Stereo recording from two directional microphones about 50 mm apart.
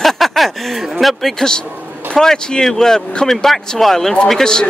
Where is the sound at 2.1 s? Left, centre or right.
Centre.